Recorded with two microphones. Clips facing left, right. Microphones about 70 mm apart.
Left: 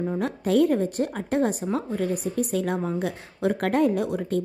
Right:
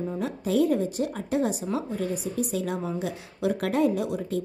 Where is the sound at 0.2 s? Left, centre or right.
Left.